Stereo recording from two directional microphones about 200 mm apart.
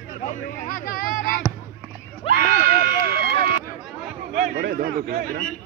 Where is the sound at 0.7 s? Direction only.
45° left (ahead or behind).